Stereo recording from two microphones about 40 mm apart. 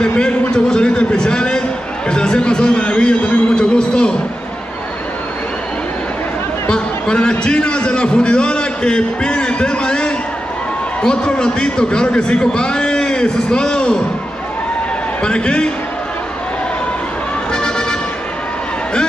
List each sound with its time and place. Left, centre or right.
0.5 s a sound: left
6.7 s a man's voice: left
15.2 s a man's voice: left
17.5 s music: left